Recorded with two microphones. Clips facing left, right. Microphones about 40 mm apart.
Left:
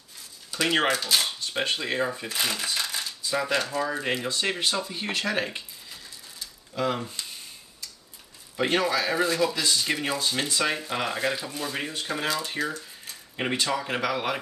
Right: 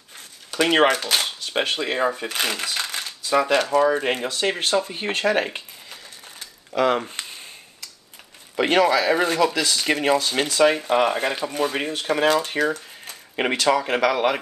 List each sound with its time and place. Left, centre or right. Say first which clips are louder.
0.5 s speech: right 6 dB; right
2.7 s coin: right 2 dB; right
3.3 s speech: right 8 dB; right
6.7 s speech: right 8 dB; right
7.0 s speech: right 5 dB; right
8.5 s speech: right 6 dB; right
9.8 s speech: right 7 dB; right
11.9 s speech: right 11 dB; right
13.0 s a sound: right 6 dB; right
14.0 s speech: right 9 dB; right